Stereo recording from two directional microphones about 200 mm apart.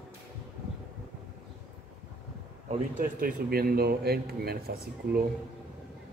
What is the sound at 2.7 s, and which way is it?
A man's voice, 45° right (ahead or behind).